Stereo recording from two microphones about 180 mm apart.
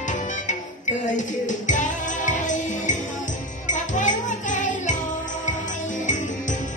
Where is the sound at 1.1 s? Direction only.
45° left (ahead or behind).